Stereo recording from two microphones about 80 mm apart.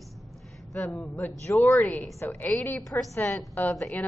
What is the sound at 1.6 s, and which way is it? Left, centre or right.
A woman's voice, centre.